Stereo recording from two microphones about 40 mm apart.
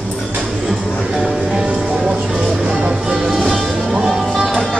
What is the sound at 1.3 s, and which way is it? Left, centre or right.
Music, centre.